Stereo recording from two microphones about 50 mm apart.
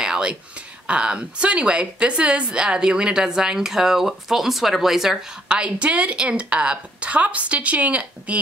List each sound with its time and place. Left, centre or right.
0.0 s a sound: centre
0.8 s a woman's voice: right; by 5.2 s centre
5.5 s a woman's voice: right